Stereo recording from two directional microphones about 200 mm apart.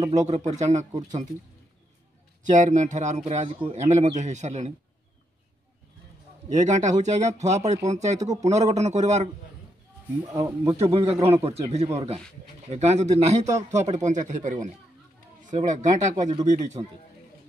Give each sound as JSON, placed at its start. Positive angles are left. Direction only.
{"t": 0.1, "sound": "speech", "side_deg": -35}
{"t": 2.4, "sound": "speech", "side_deg": -40}
{"t": 6.5, "sound": "speech", "side_deg": -35}
{"t": 10.2, "sound": "speech", "side_deg": -15}
{"t": 10.8, "sound": "a man's voice", "side_deg": -30}